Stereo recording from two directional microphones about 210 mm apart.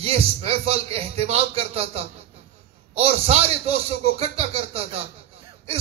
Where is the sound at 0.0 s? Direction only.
30° right (ahead or behind).